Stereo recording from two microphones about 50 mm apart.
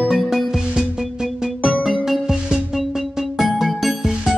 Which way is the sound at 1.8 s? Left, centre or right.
Centre.